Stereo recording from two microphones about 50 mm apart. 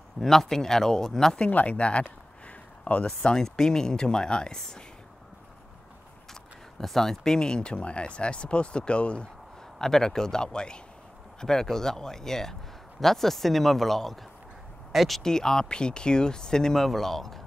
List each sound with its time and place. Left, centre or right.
0.2 s speech: centre
1.5 s speech: left
3.1 s speech: centre
6.8 s speech: centre; by 9.3 s left
9.8 s speech: centre